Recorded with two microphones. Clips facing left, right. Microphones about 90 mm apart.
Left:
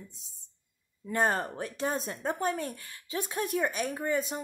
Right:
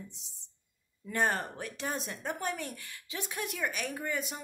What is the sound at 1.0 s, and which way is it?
A woman's voice, 30° left (ahead or behind).